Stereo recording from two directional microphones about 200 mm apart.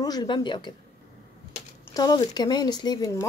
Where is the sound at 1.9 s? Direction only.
20° left (ahead or behind).